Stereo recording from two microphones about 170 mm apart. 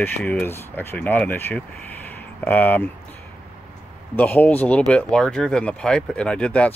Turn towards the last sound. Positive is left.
turn(degrees=5)  # may be behind; listen again after turning